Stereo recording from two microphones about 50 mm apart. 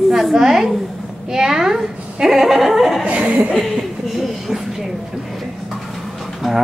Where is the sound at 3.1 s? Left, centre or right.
Right.